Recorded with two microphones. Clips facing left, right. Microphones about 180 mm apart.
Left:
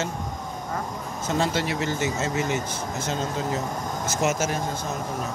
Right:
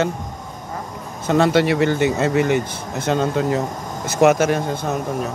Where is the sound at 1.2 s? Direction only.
65° right (ahead or behind).